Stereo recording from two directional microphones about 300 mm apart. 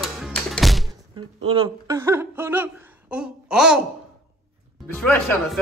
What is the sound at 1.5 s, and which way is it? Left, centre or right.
Speech, centre.